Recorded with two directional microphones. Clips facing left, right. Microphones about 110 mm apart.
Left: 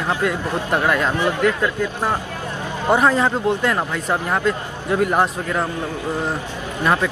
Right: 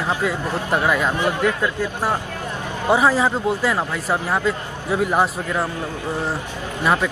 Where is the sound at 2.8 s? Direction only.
5° right (ahead or behind).